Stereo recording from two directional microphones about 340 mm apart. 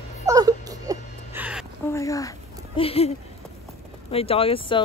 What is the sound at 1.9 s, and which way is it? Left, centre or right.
Speech, centre.